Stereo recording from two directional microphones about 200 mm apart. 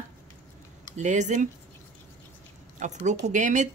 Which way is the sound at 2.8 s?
35° right (ahead or behind).